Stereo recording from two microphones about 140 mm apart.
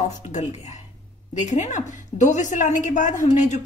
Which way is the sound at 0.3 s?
60° left (ahead or behind).